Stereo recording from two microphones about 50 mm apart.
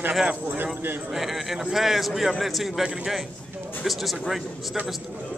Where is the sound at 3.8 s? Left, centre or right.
Centre.